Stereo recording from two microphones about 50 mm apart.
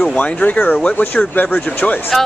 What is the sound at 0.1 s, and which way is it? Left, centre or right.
Speech, left.